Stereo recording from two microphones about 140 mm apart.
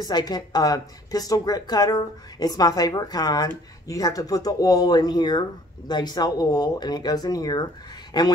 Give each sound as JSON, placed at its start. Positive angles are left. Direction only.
{"t": 0.0, "sound": "a man's voice", "side_deg": 30}